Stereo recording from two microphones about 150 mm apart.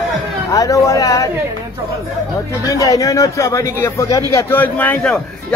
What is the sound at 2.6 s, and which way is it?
A man's voice, 20° left (ahead or behind).